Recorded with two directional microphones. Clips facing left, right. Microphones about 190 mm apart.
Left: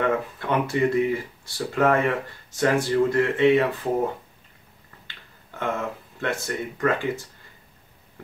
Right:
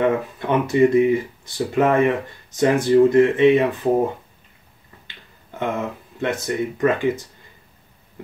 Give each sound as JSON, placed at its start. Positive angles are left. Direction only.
{"t": 0.0, "sound": "speech", "side_deg": -20}
{"t": 5.0, "sound": "speech", "side_deg": -20}